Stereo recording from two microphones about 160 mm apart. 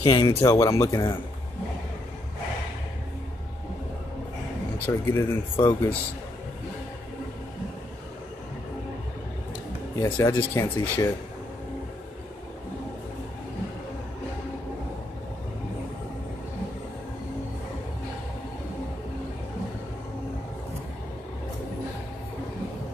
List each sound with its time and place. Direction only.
0.0 s speech: 25° left (ahead or behind)
4.7 s speech: 15° left (ahead or behind)
10.0 s speech: 15° left (ahead or behind)